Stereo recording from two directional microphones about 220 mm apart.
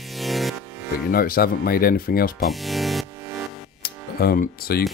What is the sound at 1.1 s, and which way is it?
Speech, 40° left (ahead or behind).